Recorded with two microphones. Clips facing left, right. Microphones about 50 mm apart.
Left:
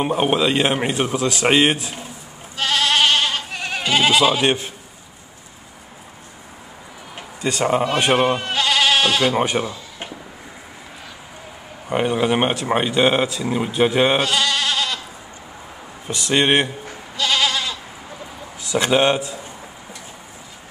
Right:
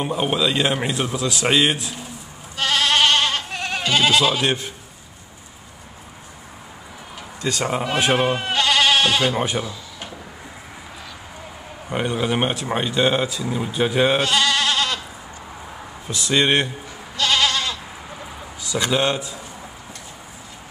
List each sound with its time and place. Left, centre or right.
0.1 s speech: left
2.5 s goat: centre
3.9 s speech: centre
7.2 s a sound: left
7.8 s speech: centre
9.4 s speech: left
11.9 s speech: centre
13.4 s speech: left
14.0 s goat: centre
16.1 s speech: left
17.2 s goat: centre
18.7 s speech: left